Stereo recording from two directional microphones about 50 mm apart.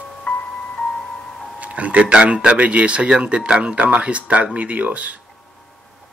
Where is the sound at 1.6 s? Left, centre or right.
Right.